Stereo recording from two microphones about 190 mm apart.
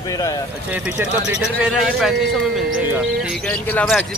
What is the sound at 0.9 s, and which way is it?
Speech, 5° right (ahead or behind).